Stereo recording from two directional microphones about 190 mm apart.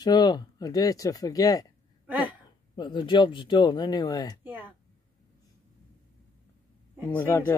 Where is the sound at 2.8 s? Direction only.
25° left (ahead or behind).